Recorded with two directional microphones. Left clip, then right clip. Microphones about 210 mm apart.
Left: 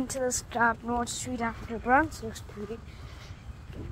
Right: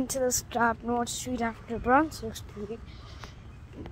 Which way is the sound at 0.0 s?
15° right (ahead or behind).